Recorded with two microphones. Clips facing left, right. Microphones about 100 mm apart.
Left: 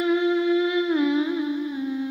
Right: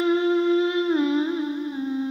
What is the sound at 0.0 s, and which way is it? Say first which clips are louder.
Music: right 1 dB; 35° right (ahead or behind).